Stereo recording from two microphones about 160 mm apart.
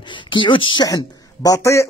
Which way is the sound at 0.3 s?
30° left (ahead or behind).